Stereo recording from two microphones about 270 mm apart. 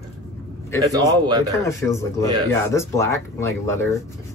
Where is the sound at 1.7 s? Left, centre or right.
Centre.